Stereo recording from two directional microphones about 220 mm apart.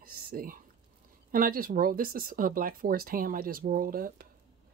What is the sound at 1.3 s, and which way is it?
Speech, 40° right (ahead or behind).